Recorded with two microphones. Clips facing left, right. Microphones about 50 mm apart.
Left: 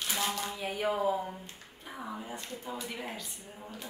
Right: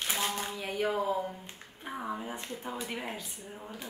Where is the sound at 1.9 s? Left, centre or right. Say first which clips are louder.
Right 4 dB; centre.